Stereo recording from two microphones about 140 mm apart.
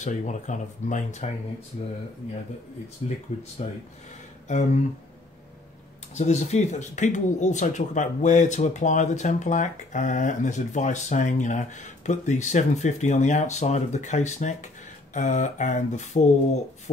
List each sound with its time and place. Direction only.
0.0 s speech: 60° left (ahead or behind)
3.0 s speech: 50° left (ahead or behind)
4.5 s speech: 55° left (ahead or behind)
6.1 s speech: 55° left (ahead or behind)